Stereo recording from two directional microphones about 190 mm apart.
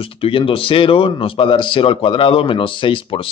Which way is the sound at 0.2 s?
30° left (ahead or behind).